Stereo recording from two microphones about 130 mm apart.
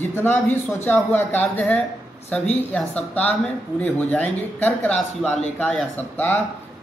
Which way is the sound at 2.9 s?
10° left (ahead or behind).